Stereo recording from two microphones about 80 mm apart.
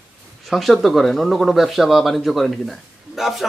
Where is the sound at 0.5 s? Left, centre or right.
Centre.